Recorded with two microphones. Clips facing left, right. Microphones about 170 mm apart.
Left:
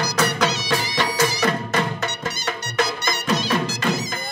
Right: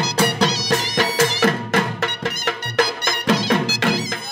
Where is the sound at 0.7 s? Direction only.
45° right (ahead or behind).